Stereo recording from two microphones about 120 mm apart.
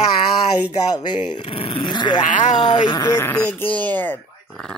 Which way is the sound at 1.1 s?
50° left (ahead or behind).